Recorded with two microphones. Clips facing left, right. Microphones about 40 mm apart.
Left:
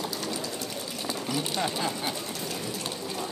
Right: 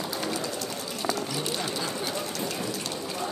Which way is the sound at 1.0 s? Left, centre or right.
Centre.